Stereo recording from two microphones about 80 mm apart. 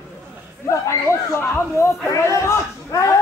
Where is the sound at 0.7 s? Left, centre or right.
Left.